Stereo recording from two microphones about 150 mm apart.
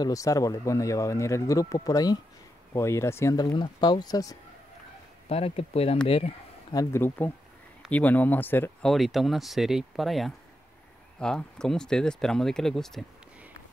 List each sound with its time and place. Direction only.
0.0 s speech: 25° left (ahead or behind)
5.3 s speech: 40° left (ahead or behind)
6.7 s speech: 20° left (ahead or behind)
8.8 s speech: centre (ahead or behind)